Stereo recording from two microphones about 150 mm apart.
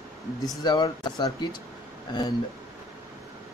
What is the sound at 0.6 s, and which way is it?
Speech, 30° left (ahead or behind).